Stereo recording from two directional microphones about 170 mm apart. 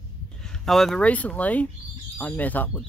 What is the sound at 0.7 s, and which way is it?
Speech, centre (ahead or behind).